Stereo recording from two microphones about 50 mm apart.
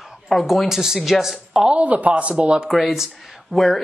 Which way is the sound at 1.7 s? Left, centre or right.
Right.